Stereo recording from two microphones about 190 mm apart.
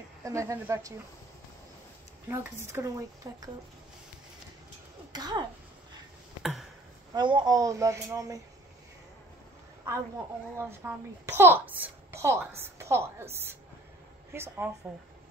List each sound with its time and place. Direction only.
0.2 s a child's voice: 15° right (ahead or behind)
2.2 s a child's voice: 10° right (ahead or behind)
5.1 s speech: 20° right (ahead or behind)
7.2 s a child's voice: 25° right (ahead or behind)
9.8 s a child's voice: 15° right (ahead or behind)